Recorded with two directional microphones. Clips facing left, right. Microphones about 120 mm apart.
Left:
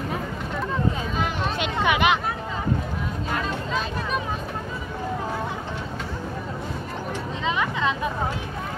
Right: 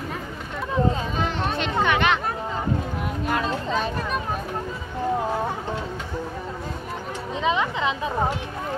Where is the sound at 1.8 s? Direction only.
5° left (ahead or behind).